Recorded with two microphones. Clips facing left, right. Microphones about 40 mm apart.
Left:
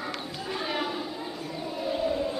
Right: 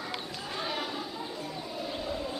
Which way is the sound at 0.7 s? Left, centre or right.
Centre.